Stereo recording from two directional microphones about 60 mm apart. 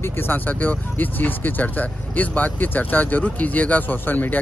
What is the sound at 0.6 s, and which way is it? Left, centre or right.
Speech, left.